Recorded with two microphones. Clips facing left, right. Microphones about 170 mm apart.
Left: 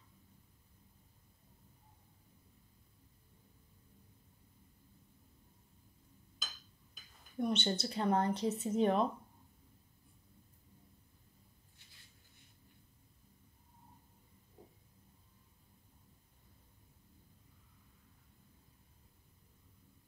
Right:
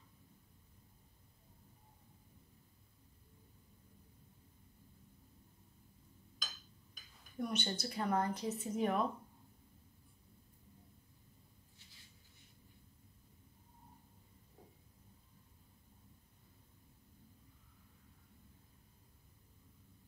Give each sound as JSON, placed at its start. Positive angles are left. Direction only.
{"t": 7.3, "sound": "speech", "side_deg": 25}